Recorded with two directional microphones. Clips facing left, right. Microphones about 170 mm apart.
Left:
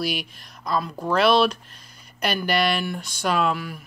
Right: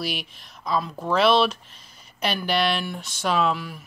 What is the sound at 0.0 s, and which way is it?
Speech, centre (ahead or behind).